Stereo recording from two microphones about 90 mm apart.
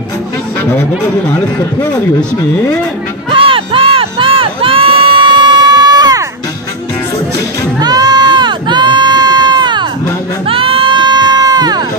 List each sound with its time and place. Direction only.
3.3 s crowd: 80° right; by 6.2 s 45° right (ahead or behind)
7.8 s crowd: 45° right (ahead or behind)
10.4 s music: 90° right; by 11.8 s 50° right (ahead or behind)